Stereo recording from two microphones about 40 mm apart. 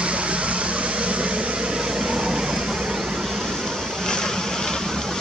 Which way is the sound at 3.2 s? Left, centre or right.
Centre.